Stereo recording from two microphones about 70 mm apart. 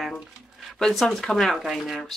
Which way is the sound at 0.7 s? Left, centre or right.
Centre.